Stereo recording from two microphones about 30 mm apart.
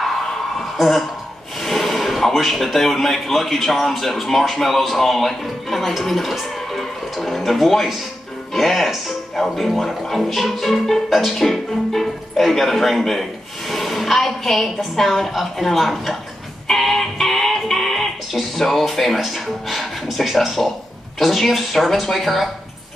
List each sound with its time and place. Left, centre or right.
0.2 s a sound: centre
0.7 s a woman's voice: centre
16.7 s music: centre
20.6 s a man's voice: centre
21.2 s speech: centre